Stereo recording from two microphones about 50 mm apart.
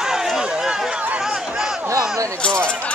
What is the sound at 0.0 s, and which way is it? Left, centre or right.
Run, centre.